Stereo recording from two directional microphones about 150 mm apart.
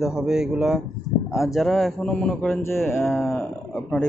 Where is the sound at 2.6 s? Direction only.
15° left (ahead or behind).